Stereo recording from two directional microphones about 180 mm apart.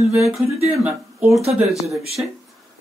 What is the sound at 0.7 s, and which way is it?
Speech, 5° right (ahead or behind).